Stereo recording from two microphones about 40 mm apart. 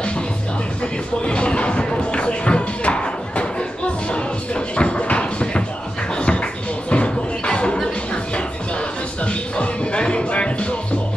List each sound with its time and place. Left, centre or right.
1.2 s music: left
9.2 s music: left